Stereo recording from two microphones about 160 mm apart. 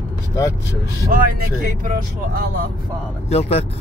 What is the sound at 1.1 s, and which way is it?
Speech, 65° right (ahead or behind).